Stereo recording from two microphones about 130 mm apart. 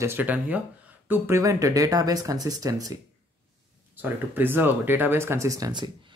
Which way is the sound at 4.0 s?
15° right (ahead or behind).